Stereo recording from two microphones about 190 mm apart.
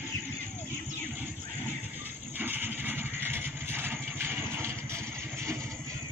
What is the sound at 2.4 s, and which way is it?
Vehicle, 10° right (ahead or behind).